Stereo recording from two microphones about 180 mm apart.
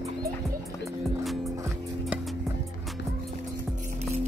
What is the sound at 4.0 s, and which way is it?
Music, 40° right (ahead or behind).